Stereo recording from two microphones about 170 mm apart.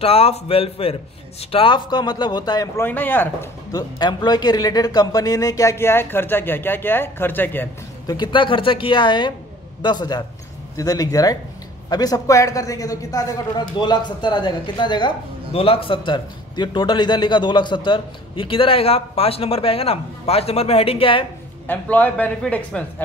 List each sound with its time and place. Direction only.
0.0 s a man's voice: 35° left (ahead or behind)
2.8 s a man's voice: 10° left (ahead or behind)
3.7 s a man's voice: 25° left (ahead or behind)
8.1 s a man's voice: 25° left (ahead or behind)
21.6 s a man's voice: 10° left (ahead or behind)